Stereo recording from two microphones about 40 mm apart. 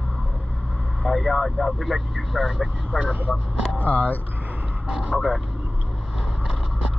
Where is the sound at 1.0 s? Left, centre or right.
Centre.